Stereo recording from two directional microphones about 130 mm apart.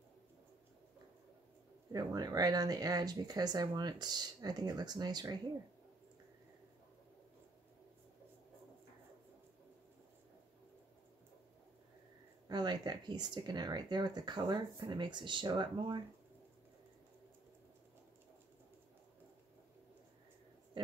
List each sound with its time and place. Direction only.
1.9 s speech: 30° right (ahead or behind)
12.4 s speech: 30° right (ahead or behind)